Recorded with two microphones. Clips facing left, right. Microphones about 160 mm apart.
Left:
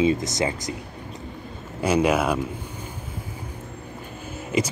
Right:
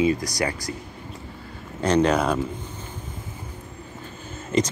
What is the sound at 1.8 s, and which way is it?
Speech, 10° left (ahead or behind).